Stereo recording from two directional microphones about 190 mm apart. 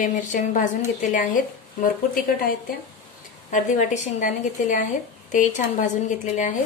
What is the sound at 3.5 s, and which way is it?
A woman's voice, 40° left (ahead or behind).